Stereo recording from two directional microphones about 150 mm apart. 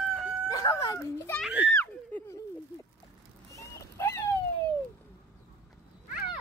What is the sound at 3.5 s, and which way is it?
Dog, 20° left (ahead or behind).